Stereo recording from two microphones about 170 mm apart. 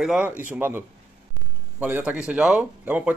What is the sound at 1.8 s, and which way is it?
Speech, 10° right (ahead or behind).